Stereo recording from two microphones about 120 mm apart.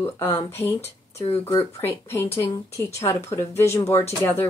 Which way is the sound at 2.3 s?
25° left (ahead or behind).